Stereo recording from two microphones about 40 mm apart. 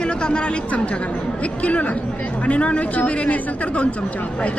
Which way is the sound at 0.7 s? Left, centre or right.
Left.